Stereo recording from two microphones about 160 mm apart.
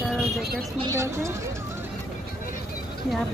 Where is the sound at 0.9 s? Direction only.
15° right (ahead or behind).